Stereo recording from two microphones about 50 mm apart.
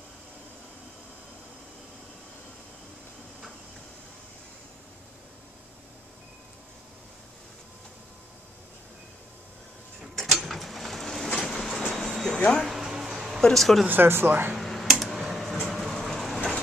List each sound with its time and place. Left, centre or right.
10.1 s mechanisms: centre
11.3 s train: centre
11.8 s vehicle: centre
12.6 s a sound: centre
13.4 s speech: centre
13.8 s speech: right
14.6 s a sound: centre